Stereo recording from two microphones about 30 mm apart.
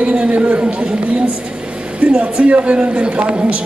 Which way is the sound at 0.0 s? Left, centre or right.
Right.